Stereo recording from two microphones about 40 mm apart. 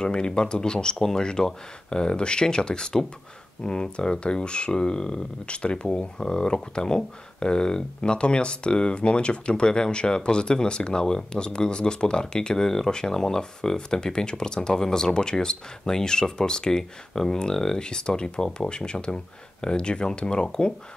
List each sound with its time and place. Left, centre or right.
0.0 s speech: left